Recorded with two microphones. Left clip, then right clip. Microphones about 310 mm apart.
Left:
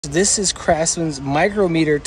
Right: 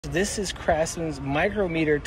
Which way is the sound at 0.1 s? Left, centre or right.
Centre.